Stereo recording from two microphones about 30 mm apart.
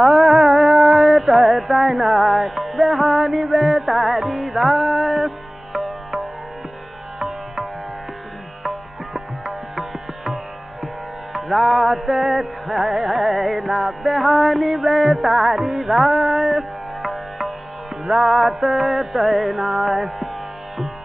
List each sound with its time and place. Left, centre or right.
0.0 s music: centre
8.6 s music: centre